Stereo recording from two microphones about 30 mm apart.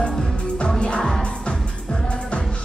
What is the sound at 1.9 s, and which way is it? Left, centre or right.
Music, left.